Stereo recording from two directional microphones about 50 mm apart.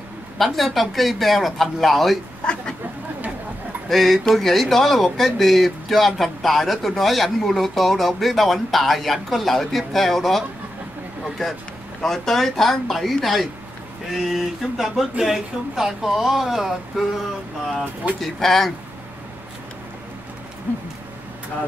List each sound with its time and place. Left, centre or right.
0.4 s speech: centre
2.4 s a sound: left
3.9 s speech: centre
18.2 s speech: centre